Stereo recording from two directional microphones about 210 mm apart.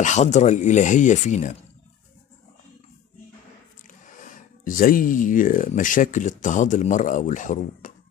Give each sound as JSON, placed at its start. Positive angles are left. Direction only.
{"t": 0.0, "sound": "speech", "side_deg": 35}
{"t": 4.0, "sound": "speech", "side_deg": 40}